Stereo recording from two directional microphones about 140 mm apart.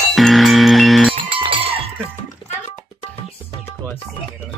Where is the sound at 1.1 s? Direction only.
40° right (ahead or behind).